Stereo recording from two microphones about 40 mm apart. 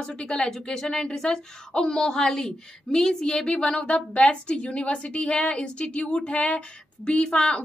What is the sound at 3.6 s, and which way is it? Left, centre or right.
A woman's voice, left.